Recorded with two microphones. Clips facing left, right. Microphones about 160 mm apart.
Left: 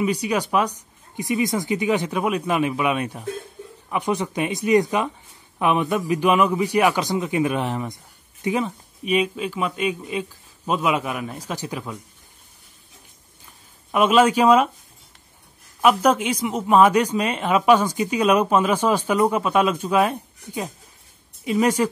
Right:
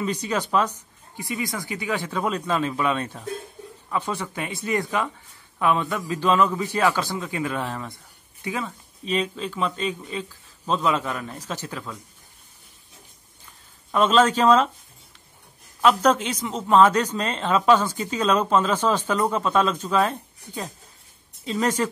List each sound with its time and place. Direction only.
0.0 s a man's voice: 10° left (ahead or behind)
13.9 s a man's voice: 10° left (ahead or behind)
15.8 s a man's voice: 10° left (ahead or behind)